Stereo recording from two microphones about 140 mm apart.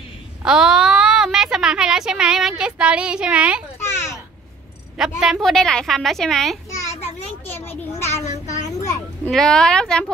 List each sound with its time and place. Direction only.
0.4 s a woman's voice: 5° right (ahead or behind)
3.8 s a sound: 20° left (ahead or behind)
4.9 s a woman's voice: 5° right (ahead or behind)
7.4 s children playing: 15° left (ahead or behind)
8.1 s child singing: 55° left (ahead or behind)
9.3 s a woman's voice: 5° left (ahead or behind)